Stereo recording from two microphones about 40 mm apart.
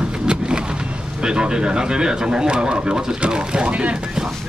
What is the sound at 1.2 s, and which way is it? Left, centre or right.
Speech, right.